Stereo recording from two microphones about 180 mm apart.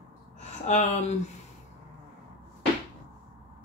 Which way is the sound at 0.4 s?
40° left (ahead or behind).